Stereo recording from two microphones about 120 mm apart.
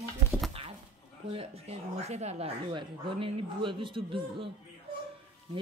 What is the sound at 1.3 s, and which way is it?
Speech, 55° right (ahead or behind).